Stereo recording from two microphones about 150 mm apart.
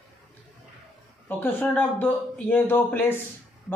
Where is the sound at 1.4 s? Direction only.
15° left (ahead or behind).